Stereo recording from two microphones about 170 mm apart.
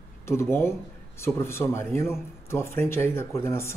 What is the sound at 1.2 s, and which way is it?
Speech, 15° left (ahead or behind).